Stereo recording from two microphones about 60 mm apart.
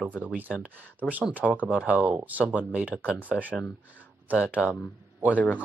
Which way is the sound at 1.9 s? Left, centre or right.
Right.